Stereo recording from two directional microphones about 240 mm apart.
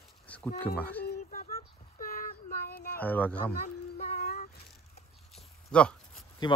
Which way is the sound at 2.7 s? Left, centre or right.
Left.